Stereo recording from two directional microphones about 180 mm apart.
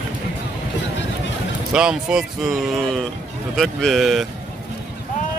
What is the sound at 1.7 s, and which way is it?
Speech, 5° right (ahead or behind).